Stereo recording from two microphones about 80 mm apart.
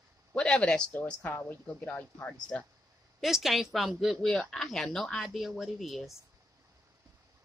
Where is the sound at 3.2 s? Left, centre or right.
Centre.